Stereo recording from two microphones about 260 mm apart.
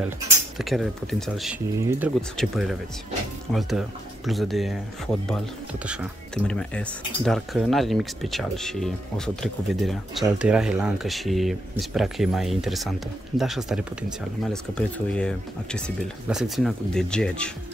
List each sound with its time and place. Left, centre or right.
0.6 s speech: centre
4.3 s speech: centre